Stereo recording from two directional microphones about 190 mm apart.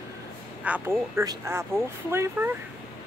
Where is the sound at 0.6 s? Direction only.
10° right (ahead or behind).